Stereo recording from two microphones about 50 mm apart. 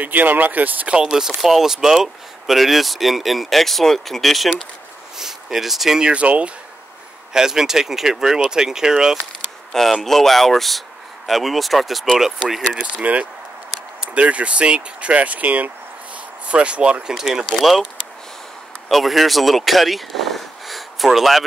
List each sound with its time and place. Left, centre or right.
0.0 s speech: right
1.0 s speech: centre
6.1 s speech: right
7.3 s speech: centre
9.4 s a sound: centre
10.0 s speech: centre
12.7 s speech: right
17.1 s speech: centre
17.6 s speech: centre
18.9 s speech: centre